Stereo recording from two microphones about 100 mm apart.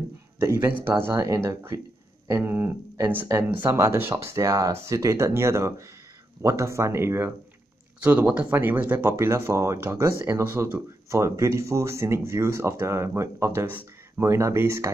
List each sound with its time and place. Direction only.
0.4 s speech: 25° right (ahead or behind)